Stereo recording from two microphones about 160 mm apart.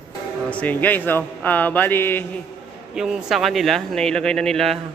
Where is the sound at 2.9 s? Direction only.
5° right (ahead or behind).